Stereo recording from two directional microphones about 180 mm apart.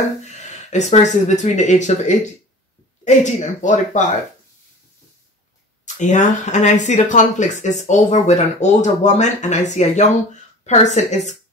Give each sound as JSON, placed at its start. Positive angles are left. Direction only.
{"t": 0.2, "sound": "speech", "side_deg": 40}
{"t": 5.9, "sound": "speech", "side_deg": 45}